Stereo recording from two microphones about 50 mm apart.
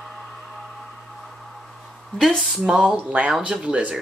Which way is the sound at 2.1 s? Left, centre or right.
Centre.